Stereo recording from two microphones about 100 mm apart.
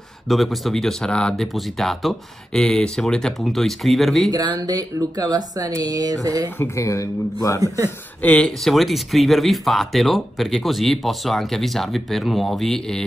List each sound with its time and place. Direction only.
0.3 s speech: centre (ahead or behind)
4.3 s speech: 40° right (ahead or behind)
6.6 s speech: 30° left (ahead or behind)
7.6 s speech: 35° right (ahead or behind)
8.2 s speech: 10° left (ahead or behind)